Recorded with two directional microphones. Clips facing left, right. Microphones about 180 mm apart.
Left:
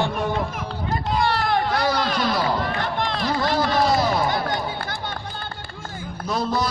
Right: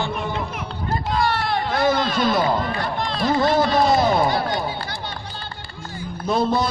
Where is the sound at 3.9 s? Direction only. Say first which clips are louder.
Right 3 dB; 50° right (ahead or behind).